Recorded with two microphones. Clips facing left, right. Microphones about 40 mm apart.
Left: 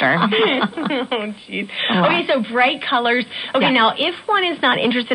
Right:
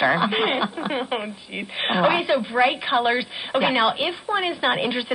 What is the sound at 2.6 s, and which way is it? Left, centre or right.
A woman's voice, centre.